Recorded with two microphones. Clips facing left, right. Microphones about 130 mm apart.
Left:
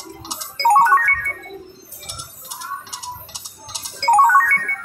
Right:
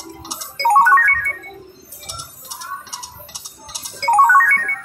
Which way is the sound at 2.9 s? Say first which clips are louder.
Left 3 dB; 20° left (ahead or behind).